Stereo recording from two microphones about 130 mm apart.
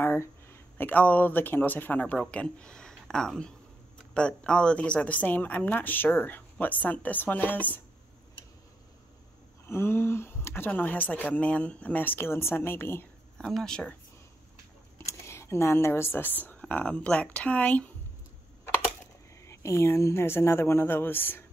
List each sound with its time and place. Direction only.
0.0 s a woman's voice: 15° left (ahead or behind)
9.7 s a woman's voice: 20° left (ahead or behind)
13.4 s speech: 5° left (ahead or behind)
15.0 s speech: 20° left (ahead or behind)
19.4 s speech: 20° left (ahead or behind)